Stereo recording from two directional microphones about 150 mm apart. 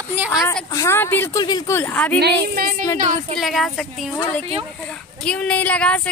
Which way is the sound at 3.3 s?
Centre (ahead or behind).